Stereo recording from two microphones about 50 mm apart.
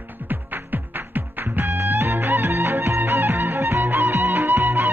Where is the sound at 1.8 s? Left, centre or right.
Right.